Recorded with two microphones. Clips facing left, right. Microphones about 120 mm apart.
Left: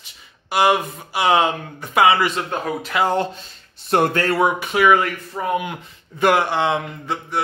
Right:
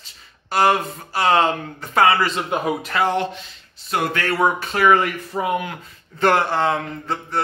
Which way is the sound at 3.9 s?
50° left (ahead or behind).